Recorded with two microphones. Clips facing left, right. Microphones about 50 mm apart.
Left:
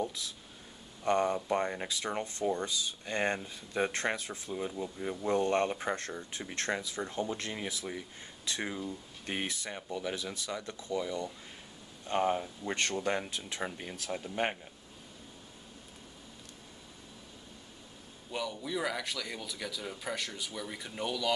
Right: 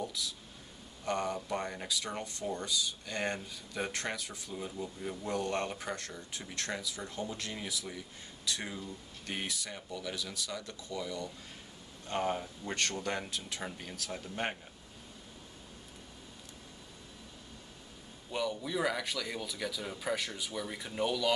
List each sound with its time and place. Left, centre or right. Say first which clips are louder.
0.0 s speech: left 2 dB; left
5.2 s speech: left 6 dB; left
18.3 s speech: right 1 dB; centre